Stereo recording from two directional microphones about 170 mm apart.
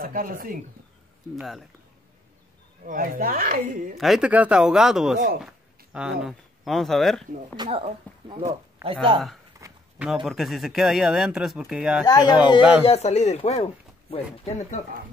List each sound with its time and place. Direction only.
0.0 s speech: 55° right (ahead or behind)
1.3 s speech: centre (ahead or behind)
2.9 s speech: 55° right (ahead or behind)
4.0 s speech: 5° right (ahead or behind)
7.5 s speech: 25° right (ahead or behind)
9.6 s speech: 5° right (ahead or behind)
12.1 s speech: 25° left (ahead or behind)
12.8 s speech: 40° left (ahead or behind)